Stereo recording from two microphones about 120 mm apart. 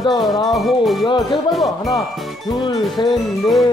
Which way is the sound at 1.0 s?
40° left (ahead or behind).